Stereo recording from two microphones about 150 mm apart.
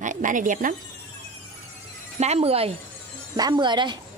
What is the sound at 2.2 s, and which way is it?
Speech, 45° right (ahead or behind).